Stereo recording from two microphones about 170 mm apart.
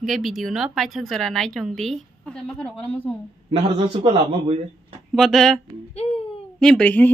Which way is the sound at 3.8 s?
30° right (ahead or behind).